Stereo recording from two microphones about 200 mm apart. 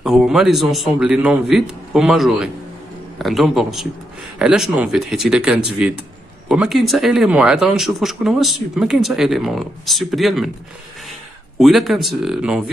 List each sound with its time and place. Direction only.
0.0 s speech: centre (ahead or behind)
11.6 s speech: centre (ahead or behind)